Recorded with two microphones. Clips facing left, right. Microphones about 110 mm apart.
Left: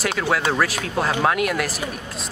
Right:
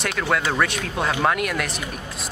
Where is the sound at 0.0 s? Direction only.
Centre (ahead or behind).